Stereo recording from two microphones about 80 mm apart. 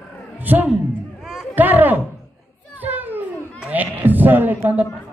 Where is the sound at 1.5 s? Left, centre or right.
Right.